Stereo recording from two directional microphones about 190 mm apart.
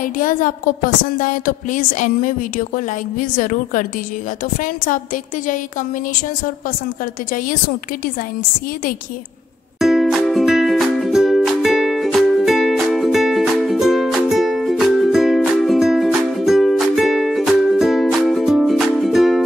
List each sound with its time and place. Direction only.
0.0 s a woman's voice: 45° left (ahead or behind)
9.8 s music: centre (ahead or behind)